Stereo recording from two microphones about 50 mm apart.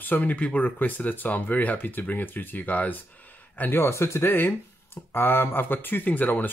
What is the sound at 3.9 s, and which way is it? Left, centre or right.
Speech, left.